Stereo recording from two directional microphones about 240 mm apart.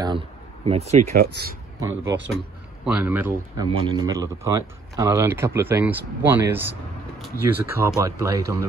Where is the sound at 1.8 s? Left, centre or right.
Centre.